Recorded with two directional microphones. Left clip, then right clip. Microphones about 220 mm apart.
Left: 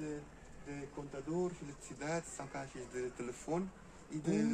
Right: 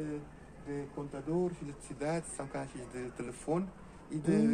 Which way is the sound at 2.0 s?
45° right (ahead or behind).